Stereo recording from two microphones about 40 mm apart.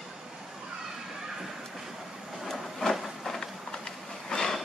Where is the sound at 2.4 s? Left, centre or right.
Centre.